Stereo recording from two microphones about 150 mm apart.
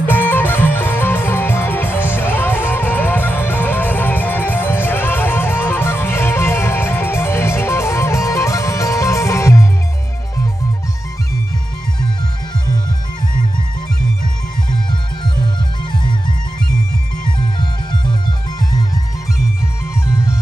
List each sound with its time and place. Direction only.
0.0 s music: 10° left (ahead or behind)
15.4 s music: 30° left (ahead or behind)